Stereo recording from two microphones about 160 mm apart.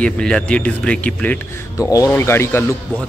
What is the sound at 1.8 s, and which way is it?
Speech, 20° left (ahead or behind).